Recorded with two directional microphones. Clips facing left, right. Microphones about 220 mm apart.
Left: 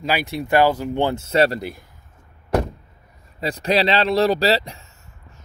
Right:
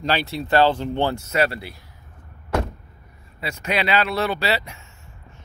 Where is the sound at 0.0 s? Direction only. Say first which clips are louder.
Left 1 dB; 10° left (ahead or behind).